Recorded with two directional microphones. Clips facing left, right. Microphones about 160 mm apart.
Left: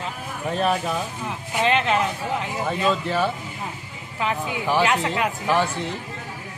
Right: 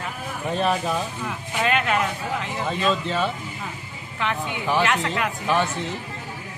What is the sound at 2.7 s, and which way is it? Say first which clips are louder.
Speech: left 1 dB; 15° left (ahead or behind).